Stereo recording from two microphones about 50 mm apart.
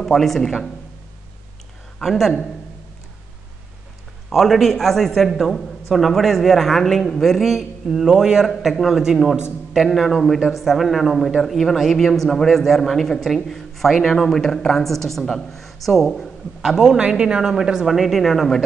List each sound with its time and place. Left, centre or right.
0.0 s a man's voice: centre
2.0 s speech: centre
4.3 s a man's voice: centre
8.5 s a man's voice: centre
16.6 s speech: centre